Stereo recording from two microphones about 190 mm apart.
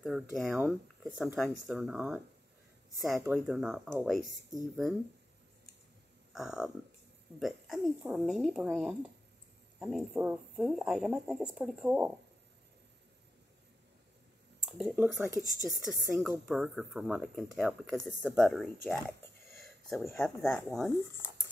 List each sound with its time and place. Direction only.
0.0 s speech: centre (ahead or behind)
4.5 s speech: 20° right (ahead or behind)
6.3 s speech: 5° right (ahead or behind)
14.6 s speech: centre (ahead or behind)